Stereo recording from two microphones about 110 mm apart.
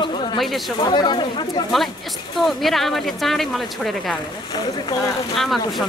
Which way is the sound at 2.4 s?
Centre (ahead or behind).